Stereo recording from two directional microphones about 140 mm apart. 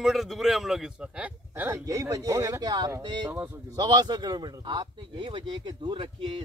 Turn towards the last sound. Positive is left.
turn(degrees=-35)  # may be behind; listen again after turning